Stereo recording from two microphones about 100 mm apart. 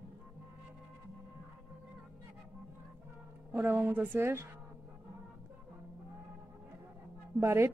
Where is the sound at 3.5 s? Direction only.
20° right (ahead or behind).